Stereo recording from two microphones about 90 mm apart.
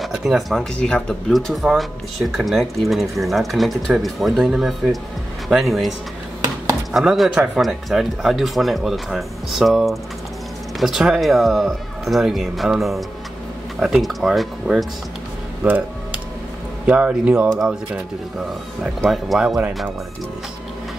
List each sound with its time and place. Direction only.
0.0 s speech: 5° right (ahead or behind)
0.7 s speech: 10° left (ahead or behind)
1.5 s speech: 5° right (ahead or behind)
16.8 s speech: 10° right (ahead or behind)
19.0 s speech: centre (ahead or behind)